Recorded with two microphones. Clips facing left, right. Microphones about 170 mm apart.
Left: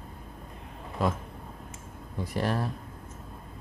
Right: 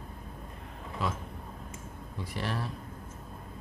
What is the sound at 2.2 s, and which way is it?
Speech, 45° left (ahead or behind).